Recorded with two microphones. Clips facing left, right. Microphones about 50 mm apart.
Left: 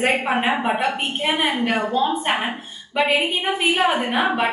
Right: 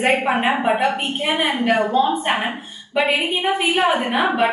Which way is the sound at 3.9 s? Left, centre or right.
Right.